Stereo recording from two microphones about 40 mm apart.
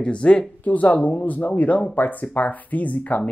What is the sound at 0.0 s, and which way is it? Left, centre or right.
Speech, left.